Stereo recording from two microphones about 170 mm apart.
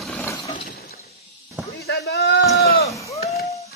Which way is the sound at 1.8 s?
70° left (ahead or behind).